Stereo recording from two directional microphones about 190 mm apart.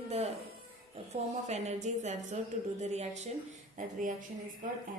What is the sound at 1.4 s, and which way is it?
Speech, 35° right (ahead or behind).